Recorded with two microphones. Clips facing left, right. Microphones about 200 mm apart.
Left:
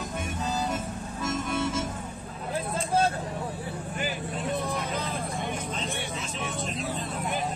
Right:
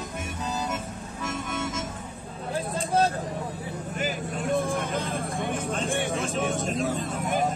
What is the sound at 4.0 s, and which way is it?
Vehicle, 45° right (ahead or behind).